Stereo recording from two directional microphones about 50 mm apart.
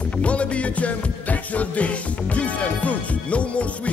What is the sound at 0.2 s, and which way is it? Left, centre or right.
Music, left.